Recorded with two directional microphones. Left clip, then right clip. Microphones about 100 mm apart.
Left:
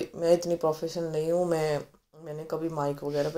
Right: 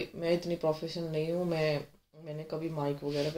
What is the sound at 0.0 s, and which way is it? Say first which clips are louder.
Speech: left 7 dB; 25° left (ahead or behind).